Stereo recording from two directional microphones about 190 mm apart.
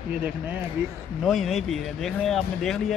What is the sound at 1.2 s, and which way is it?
Speech, centre (ahead or behind).